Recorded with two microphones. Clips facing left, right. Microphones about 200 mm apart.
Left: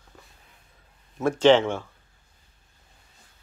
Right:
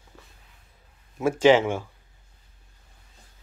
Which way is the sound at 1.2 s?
10° right (ahead or behind).